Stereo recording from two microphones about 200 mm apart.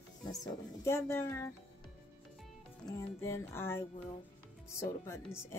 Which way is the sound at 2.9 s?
15° left (ahead or behind).